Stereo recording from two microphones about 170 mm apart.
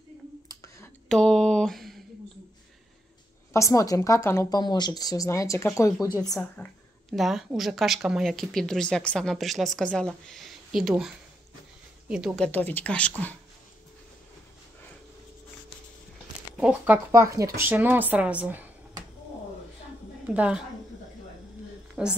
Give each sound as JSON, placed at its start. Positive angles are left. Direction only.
{"t": 0.5, "sound": "a sound", "side_deg": 20}
{"t": 1.0, "sound": "a sound", "side_deg": 5}
{"t": 3.5, "sound": "a woman's voice", "side_deg": 20}
{"t": 6.5, "sound": "a woman's voice", "side_deg": 5}
{"t": 12.4, "sound": "speech", "side_deg": 10}
{"t": 16.5, "sound": "speech", "side_deg": -5}
{"t": 20.2, "sound": "speech", "side_deg": -5}
{"t": 22.0, "sound": "a woman's voice", "side_deg": -5}